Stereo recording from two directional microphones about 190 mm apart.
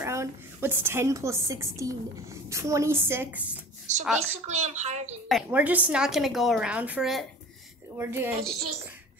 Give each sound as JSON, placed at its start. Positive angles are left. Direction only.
{"t": 0.0, "sound": "a woman's voice", "side_deg": -15}
{"t": 3.9, "sound": "speech", "side_deg": -40}
{"t": 5.3, "sound": "a woman's voice", "side_deg": -10}
{"t": 8.0, "sound": "a woman's voice", "side_deg": -10}